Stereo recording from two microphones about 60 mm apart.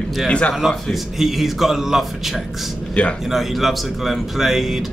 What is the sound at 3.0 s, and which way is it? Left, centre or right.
Speech, centre.